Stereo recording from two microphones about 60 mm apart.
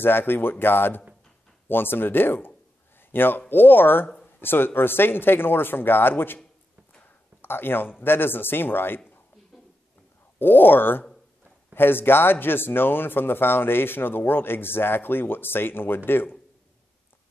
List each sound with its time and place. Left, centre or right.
0.0 s speech: left
7.4 s speech: left
10.4 s speech: left